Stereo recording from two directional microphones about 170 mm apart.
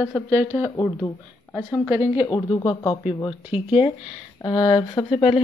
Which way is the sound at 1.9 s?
30° left (ahead or behind).